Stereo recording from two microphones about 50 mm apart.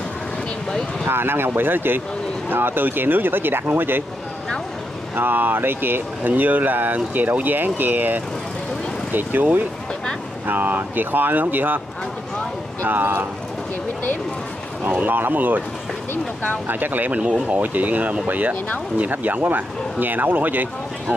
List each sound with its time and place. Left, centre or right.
1.0 s speech: right
5.1 s speech: right
12.8 s speech: right
14.9 s speech: right
16.6 s speech: right